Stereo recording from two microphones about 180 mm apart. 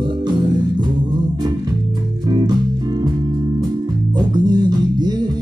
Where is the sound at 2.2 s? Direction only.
25° right (ahead or behind).